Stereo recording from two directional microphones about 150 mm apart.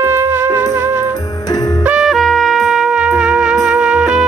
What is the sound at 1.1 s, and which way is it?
Music, 25° left (ahead or behind).